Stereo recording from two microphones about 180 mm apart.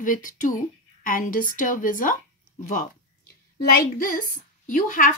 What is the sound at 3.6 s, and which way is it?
A woman's voice, 50° left (ahead or behind).